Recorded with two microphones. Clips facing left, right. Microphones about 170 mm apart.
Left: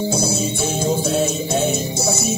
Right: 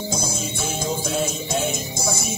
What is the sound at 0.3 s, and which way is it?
Music, 30° left (ahead or behind).